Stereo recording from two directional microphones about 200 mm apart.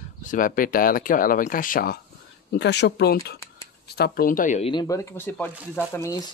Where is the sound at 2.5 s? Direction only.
60° left (ahead or behind); by 4.6 s 40° left (ahead or behind).